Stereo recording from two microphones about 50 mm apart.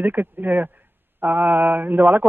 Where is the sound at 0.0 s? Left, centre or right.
Right.